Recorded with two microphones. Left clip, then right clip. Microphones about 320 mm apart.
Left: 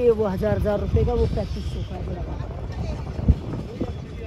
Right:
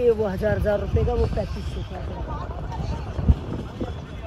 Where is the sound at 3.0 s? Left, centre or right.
Centre.